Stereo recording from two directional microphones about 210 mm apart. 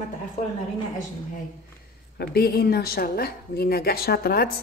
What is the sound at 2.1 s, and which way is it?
A woman's voice, 50° left (ahead or behind).